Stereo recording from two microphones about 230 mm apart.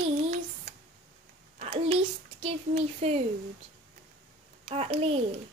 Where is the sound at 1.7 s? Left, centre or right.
Right.